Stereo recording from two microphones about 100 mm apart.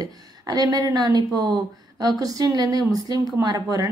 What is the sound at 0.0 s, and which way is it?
Speech, 40° right (ahead or behind).